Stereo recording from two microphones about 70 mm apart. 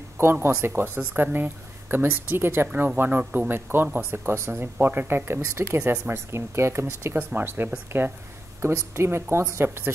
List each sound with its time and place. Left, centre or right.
0.2 s speech: right
3.0 s speech: right
3.4 s speech: right